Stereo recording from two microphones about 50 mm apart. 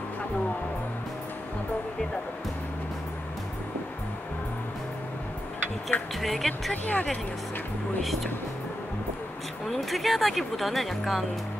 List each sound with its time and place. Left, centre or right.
5.9 s speech: left
6.2 s speech: centre
6.7 s speech: left
9.7 s speech: centre